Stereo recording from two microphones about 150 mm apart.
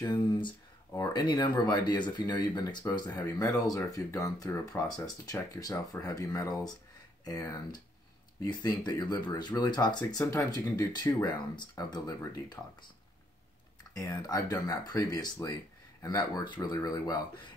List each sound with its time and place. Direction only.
0.0 s speech: 30° left (ahead or behind)
13.9 s speech: 20° left (ahead or behind)